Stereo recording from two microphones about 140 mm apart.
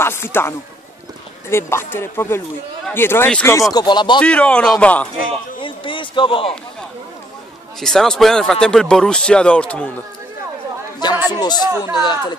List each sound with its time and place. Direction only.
0.0 s a sound: 15° left (ahead or behind)
1.5 s speech: 20° left (ahead or behind)
3.7 s speech: 30° left (ahead or behind)
4.2 s speech: 10° left (ahead or behind)
5.6 s a sound: 35° left (ahead or behind)
7.8 s speech: 5° left (ahead or behind)
11.0 s chatter: 30° left (ahead or behind)
11.3 s speech: 30° left (ahead or behind)